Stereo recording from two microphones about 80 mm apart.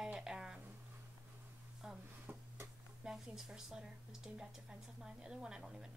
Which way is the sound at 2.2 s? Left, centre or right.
Right.